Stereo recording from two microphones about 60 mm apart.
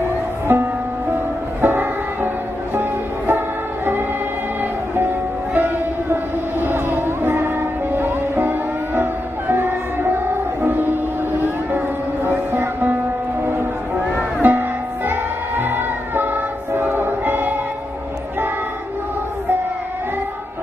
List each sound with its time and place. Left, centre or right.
0.5 s music: right
5.5 s music: right
12.3 s music: right
14.4 s music: right
16.7 s choir: right